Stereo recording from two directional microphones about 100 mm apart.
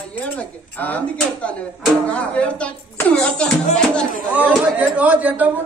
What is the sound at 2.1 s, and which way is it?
Speech, 10° left (ahead or behind).